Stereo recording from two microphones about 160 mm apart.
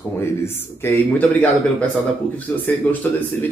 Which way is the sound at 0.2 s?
15° left (ahead or behind).